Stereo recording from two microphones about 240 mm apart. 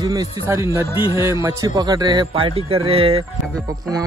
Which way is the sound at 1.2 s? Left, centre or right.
Centre.